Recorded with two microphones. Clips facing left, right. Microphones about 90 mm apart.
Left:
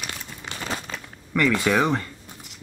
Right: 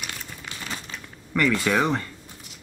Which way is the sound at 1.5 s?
5° left (ahead or behind).